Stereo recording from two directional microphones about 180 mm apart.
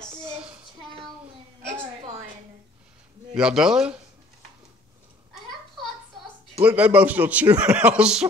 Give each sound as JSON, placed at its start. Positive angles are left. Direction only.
{"t": 0.2, "sound": "child singing", "side_deg": -10}
{"t": 3.3, "sound": "speech", "side_deg": -5}
{"t": 6.6, "sound": "a man's voice", "side_deg": -10}